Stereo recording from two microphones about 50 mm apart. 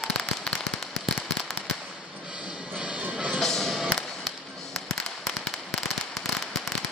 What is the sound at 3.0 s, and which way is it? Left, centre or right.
Music, right.